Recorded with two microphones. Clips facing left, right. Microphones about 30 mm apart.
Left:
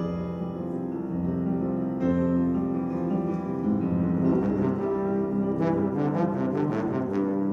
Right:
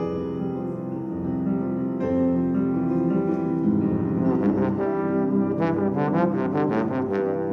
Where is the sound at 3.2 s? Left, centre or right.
Right.